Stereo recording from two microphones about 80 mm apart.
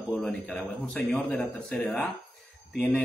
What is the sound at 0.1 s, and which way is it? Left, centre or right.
Speech, centre.